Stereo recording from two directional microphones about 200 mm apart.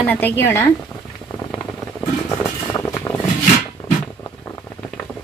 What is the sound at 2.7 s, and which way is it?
Vehicle, 15° left (ahead or behind).